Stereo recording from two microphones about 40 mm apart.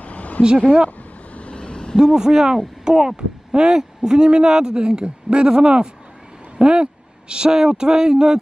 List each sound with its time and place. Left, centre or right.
0.0 s a sound: left
0.8 s vehicle: left
2.0 s speech: centre